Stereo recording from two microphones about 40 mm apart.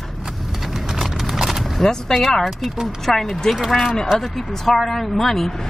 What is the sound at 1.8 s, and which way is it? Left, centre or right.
Speech, centre.